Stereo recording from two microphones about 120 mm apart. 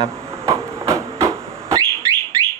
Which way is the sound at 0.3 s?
25° right (ahead or behind).